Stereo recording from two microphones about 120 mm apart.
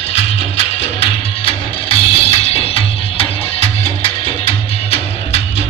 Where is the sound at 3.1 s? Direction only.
50° left (ahead or behind).